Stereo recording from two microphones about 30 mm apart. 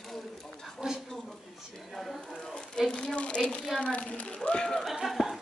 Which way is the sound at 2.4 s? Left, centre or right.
Left.